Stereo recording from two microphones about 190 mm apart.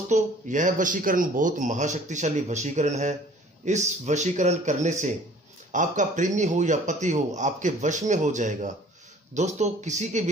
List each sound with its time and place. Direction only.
0.1 s speech: 40° right (ahead or behind)